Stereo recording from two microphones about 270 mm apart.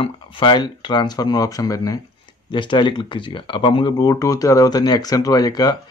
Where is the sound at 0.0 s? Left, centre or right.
Centre.